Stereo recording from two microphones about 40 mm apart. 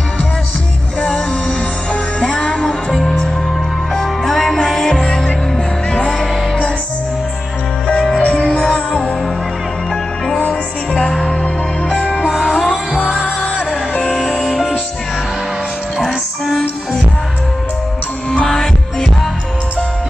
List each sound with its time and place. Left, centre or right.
2.1 s music: left
3.9 s music: centre
5.0 s music: centre
7.8 s music: centre
10.4 s music: left
12.4 s music: left
14.3 s music: left
18.3 s music: centre